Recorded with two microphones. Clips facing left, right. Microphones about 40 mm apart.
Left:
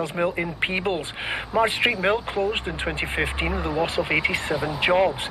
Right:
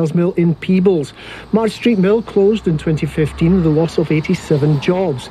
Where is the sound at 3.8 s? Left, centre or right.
Left.